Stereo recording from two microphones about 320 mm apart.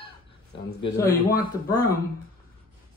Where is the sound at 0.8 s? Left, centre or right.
Centre.